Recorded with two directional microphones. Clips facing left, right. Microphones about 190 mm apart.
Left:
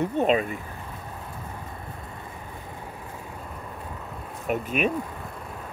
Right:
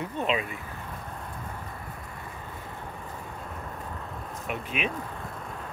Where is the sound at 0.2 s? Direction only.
45° left (ahead or behind).